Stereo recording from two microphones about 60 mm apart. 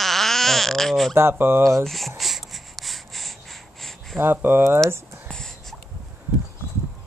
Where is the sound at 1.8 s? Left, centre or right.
Centre.